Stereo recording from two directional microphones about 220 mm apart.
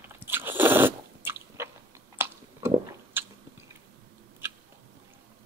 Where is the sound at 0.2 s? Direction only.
10° right (ahead or behind).